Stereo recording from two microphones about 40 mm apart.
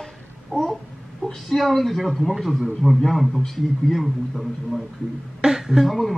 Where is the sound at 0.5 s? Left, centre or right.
Left.